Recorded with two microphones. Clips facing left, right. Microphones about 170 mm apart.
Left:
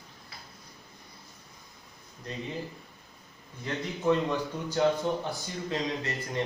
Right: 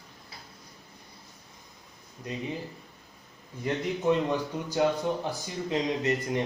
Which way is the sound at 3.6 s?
20° right (ahead or behind).